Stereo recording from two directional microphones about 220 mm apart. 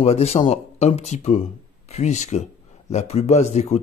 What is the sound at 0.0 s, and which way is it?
Speech, 30° left (ahead or behind).